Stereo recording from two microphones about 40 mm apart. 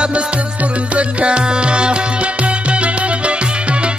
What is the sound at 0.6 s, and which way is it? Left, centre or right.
Music, right.